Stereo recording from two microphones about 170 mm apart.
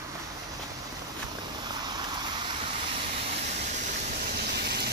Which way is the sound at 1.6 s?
25° right (ahead or behind).